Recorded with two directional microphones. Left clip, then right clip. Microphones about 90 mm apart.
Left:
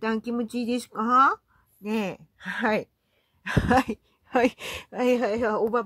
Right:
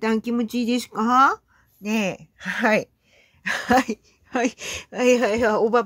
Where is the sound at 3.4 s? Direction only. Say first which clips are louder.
Right 3 dB; 15° left (ahead or behind).